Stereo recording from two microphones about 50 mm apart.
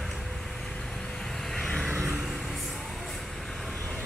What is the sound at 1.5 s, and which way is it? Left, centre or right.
Vehicle, centre.